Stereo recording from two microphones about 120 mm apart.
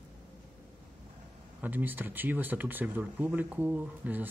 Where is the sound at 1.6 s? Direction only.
15° right (ahead or behind).